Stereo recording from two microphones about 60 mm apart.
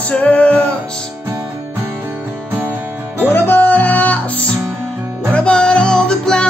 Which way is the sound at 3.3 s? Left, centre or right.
Left.